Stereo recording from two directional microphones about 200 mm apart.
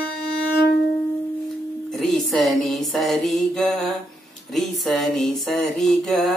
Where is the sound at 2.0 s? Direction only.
Centre (ahead or behind).